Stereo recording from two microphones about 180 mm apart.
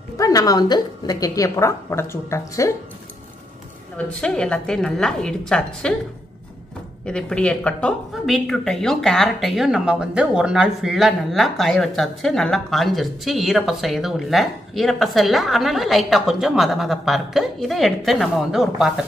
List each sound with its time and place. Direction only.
0.2 s a woman's voice: 20° left (ahead or behind)
4.2 s speech: 5° left (ahead or behind)
7.1 s speech: 5° left (ahead or behind)